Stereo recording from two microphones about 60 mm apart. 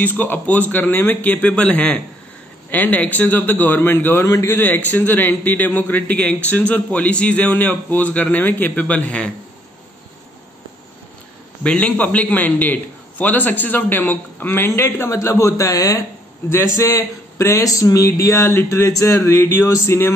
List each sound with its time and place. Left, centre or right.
0.0 s a man's voice: left
4.2 s a man's voice: left
4.5 s a man's voice: left
11.6 s a man's voice: centre; by 16.0 s left
16.4 s speech: left
18.9 s speech: left